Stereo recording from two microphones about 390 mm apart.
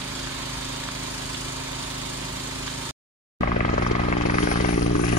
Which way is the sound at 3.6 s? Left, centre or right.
Centre.